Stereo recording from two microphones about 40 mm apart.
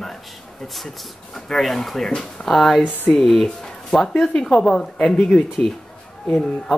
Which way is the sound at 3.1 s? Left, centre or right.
Left.